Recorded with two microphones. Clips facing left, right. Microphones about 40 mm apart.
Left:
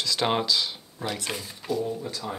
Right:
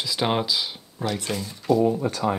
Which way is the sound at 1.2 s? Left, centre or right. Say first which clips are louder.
Right 6 dB; centre.